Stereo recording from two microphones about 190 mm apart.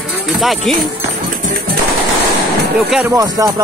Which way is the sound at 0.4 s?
Centre (ahead or behind).